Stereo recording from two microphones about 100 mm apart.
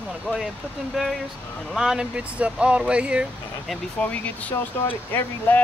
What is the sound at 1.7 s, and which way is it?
Speech, 5° right (ahead or behind).